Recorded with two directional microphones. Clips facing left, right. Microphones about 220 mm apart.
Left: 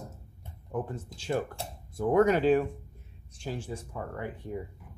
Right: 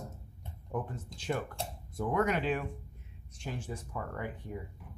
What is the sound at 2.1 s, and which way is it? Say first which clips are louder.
Speech: left 8 dB; 35° left (ahead or behind).